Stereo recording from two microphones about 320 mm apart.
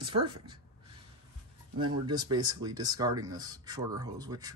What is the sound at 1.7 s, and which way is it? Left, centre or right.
Speech, centre.